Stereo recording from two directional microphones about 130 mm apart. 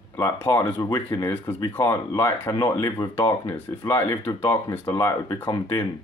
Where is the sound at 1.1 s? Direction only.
15° left (ahead or behind).